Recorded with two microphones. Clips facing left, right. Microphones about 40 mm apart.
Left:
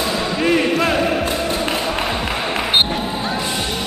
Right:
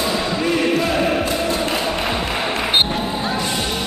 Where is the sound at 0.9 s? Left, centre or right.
Centre.